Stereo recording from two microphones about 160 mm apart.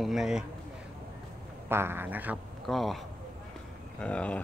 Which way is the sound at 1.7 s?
15° right (ahead or behind).